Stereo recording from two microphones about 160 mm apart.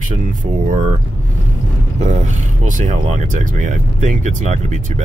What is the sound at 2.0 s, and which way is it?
Speech, 50° right (ahead or behind).